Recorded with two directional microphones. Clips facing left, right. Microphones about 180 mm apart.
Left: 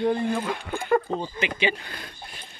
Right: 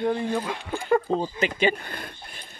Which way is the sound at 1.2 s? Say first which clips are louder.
Right 3 dB; 40° right (ahead or behind).